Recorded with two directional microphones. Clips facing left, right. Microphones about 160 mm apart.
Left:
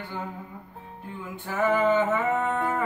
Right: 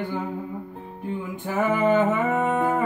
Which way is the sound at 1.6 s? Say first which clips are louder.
Right 2 dB; 10° right (ahead or behind).